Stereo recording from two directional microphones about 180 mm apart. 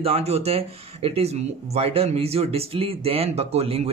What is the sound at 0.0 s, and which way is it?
Speech, 35° right (ahead or behind).